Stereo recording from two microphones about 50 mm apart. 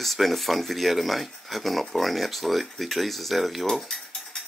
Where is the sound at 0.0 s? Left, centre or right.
Centre.